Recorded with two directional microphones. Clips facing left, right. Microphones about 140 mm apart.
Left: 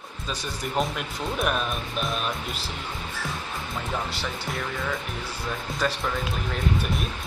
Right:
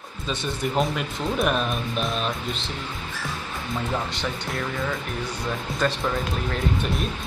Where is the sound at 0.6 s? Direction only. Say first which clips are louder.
Right 3 dB; centre (ahead or behind).